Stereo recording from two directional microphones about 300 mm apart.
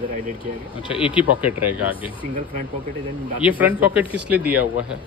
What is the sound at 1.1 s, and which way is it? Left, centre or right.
Speech, centre.